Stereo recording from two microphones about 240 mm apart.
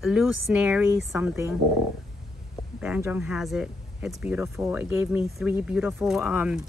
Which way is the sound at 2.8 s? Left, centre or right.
Centre.